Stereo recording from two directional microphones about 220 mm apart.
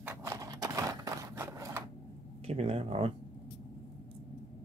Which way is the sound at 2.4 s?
25° right (ahead or behind).